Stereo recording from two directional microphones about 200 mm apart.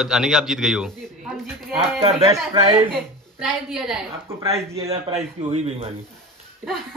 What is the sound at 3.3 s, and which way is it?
Speech, centre (ahead or behind).